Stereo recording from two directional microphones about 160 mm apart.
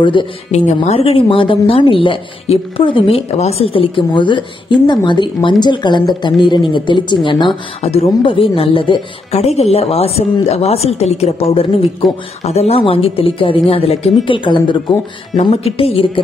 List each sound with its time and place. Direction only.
0.0 s speech: 30° left (ahead or behind)
0.5 s speech: 45° left (ahead or behind)
12.4 s speech: 40° left (ahead or behind)